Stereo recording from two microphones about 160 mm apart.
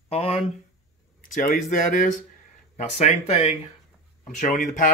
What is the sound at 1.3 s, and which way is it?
Speech, 60° left (ahead or behind).